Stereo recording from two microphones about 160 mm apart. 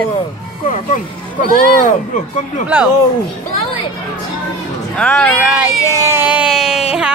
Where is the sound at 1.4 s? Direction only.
55° left (ahead or behind).